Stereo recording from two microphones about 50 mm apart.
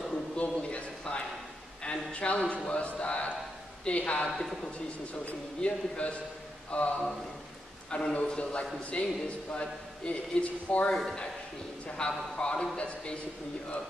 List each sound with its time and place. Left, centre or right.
0.1 s a sound: left
1.8 s speech: left
5.6 s speech: left
10.9 s speech: centre